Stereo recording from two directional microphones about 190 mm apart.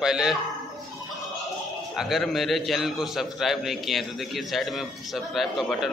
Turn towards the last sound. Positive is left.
turn(degrees=0)  # may be behind; listen again after turning